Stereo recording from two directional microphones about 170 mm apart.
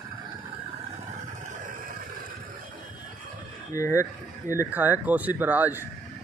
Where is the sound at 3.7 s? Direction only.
20° left (ahead or behind).